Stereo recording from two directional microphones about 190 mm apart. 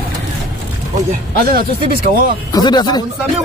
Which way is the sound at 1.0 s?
45° right (ahead or behind).